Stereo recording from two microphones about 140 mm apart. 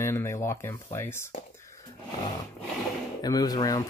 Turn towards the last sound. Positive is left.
turn(degrees=25)  # may be behind; listen again after turning